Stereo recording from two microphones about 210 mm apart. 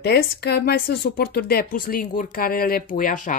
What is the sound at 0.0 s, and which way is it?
Speech, 50° left (ahead or behind).